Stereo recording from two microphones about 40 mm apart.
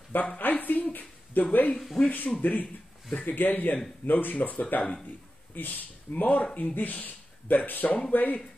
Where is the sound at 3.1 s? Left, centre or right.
Left.